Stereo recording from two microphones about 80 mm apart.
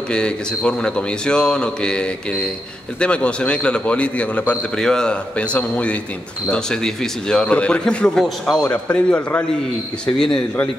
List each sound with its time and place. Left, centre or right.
0.1 s a man's voice: centre